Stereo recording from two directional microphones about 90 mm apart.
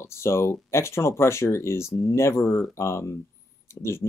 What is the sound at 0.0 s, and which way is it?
Speech, 30° left (ahead or behind).